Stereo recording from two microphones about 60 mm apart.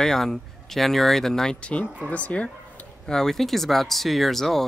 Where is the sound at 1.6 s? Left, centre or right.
Left.